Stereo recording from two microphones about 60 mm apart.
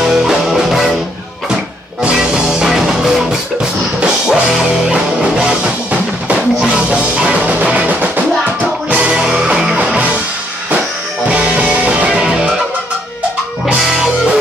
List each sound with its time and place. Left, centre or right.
0.0 s music: centre
2.0 s music: centre
6.6 s music: centre
11.2 s music: centre
12.1 s music: centre
13.7 s music: centre